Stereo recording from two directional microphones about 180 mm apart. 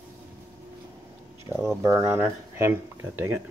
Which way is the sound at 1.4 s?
15° right (ahead or behind).